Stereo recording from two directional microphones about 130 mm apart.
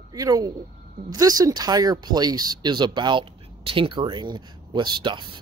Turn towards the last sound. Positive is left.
turn(degrees=-35)  # may be behind; listen again after turning